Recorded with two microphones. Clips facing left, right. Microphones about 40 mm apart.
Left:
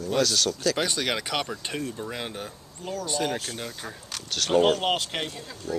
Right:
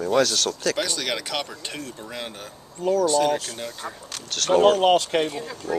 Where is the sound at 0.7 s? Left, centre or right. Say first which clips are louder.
Even; centre.